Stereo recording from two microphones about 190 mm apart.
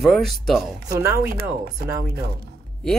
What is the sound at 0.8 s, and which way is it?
Speech, 15° right (ahead or behind).